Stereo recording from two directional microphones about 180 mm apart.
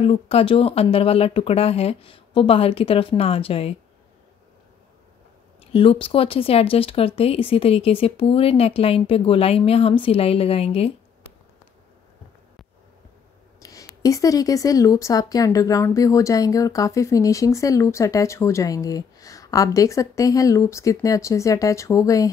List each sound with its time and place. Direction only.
0.0 s speech: 30° left (ahead or behind)
5.7 s speech: 30° left (ahead or behind)
13.6 s speech: 20° left (ahead or behind)